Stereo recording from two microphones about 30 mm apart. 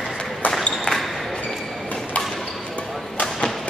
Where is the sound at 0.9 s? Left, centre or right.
Left.